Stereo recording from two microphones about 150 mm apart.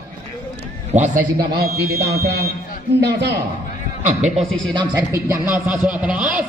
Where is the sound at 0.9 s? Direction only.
60° right (ahead or behind); by 2.2 s 90° right.